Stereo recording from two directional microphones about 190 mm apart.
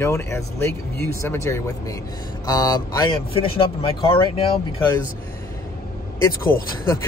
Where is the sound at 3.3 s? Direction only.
30° left (ahead or behind).